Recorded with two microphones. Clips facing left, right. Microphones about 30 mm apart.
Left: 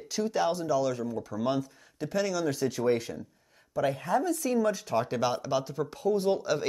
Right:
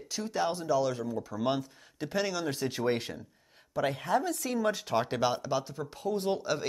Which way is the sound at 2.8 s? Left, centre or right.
Right.